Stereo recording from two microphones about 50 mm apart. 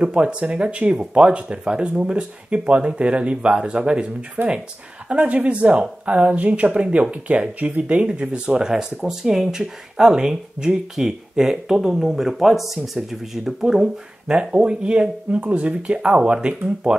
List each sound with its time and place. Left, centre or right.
0.0 s speech: right
4.4 s speech: right
5.1 s speech: right